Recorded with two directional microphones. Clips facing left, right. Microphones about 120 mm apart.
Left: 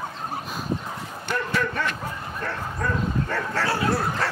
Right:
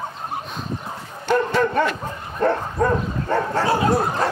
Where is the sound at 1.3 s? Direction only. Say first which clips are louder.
Right 8 dB; 40° right (ahead or behind).